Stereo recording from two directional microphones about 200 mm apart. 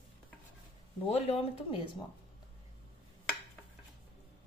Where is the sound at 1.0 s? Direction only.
30° left (ahead or behind).